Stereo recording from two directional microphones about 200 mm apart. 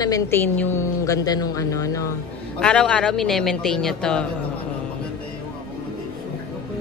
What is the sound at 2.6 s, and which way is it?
A man's voice, 5° left (ahead or behind).